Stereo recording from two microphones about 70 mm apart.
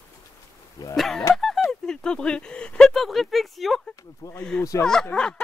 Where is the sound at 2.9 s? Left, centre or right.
Centre.